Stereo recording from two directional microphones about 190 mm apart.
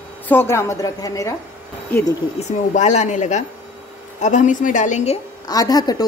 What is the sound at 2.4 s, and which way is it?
Speech, 40° left (ahead or behind).